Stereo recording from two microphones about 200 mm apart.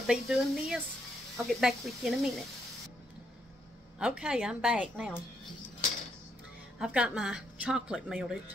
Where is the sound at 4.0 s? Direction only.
5° right (ahead or behind).